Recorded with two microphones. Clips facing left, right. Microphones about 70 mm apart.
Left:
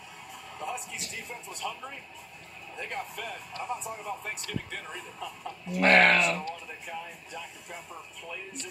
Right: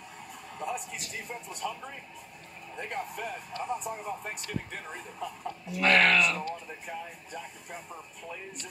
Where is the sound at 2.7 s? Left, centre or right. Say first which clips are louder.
Right 1 dB; right.